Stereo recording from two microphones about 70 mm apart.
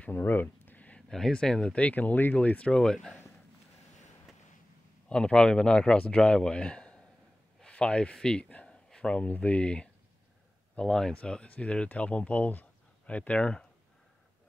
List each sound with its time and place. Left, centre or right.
0.0 s speech: left; by 3.3 s centre
5.0 s speech: centre